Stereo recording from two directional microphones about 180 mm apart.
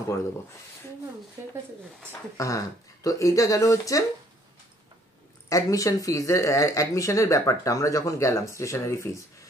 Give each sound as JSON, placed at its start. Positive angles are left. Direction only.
{"t": 2.3, "sound": "speech", "side_deg": 15}
{"t": 5.5, "sound": "speech", "side_deg": 20}